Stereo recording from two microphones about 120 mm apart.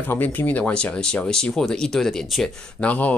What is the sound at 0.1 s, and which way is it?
Speech, 15° left (ahead or behind).